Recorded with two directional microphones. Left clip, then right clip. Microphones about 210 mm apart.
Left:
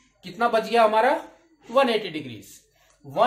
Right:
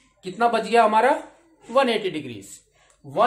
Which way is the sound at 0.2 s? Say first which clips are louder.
Right 1 dB; 20° right (ahead or behind).